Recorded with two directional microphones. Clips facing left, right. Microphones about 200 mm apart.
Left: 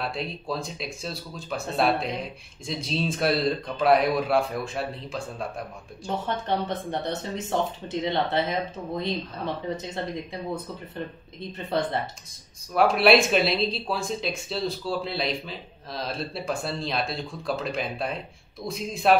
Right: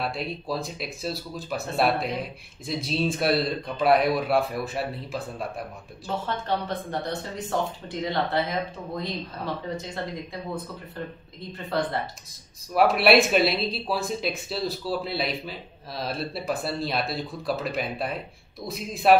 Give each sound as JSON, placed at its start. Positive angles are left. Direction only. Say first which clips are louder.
{"t": 0.0, "sound": "speech", "louder": "right 1 dB", "side_deg": 0}
{"t": 6.0, "sound": "speech", "louder": "left 1 dB", "side_deg": 20}
{"t": 11.5, "sound": "speech", "louder": "left 1 dB", "side_deg": 20}
{"t": 12.7, "sound": "speech", "louder": "even", "side_deg": 0}